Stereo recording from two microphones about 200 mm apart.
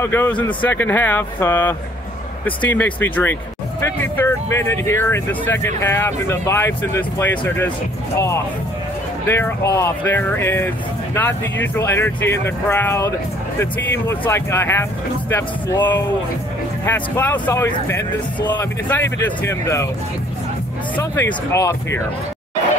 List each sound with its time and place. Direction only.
0.0 s speech: 10° left (ahead or behind)
9.3 s speech: 15° left (ahead or behind)
20.9 s speech: 10° left (ahead or behind)